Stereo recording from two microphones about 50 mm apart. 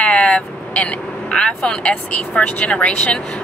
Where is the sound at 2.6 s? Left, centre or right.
Left.